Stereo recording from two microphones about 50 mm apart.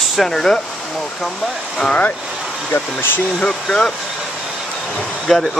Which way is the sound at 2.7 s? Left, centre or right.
Left.